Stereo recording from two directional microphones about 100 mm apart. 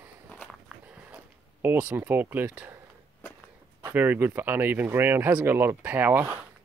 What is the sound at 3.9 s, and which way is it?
Speech, 20° right (ahead or behind).